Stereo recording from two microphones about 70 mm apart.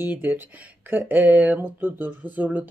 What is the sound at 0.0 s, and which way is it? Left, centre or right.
A woman's voice, right.